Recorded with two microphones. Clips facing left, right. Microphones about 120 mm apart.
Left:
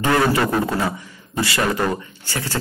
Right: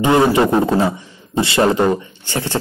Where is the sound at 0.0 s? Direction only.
20° right (ahead or behind).